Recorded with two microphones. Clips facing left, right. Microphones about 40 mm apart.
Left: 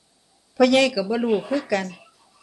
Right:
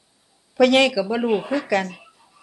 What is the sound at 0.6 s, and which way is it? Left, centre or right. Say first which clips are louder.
Speech: right 1 dB; right.